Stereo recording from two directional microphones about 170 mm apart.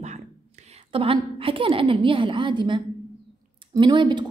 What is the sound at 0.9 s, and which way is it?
A woman's voice, 30° right (ahead or behind).